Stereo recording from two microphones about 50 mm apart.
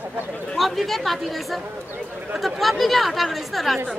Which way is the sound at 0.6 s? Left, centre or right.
Centre.